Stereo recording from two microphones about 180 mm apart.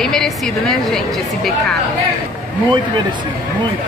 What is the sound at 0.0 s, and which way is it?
Speech, 5° left (ahead or behind).